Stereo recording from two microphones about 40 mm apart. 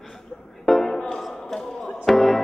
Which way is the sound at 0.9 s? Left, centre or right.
Centre.